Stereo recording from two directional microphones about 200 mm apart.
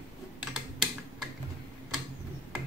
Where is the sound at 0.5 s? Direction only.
Centre (ahead or behind).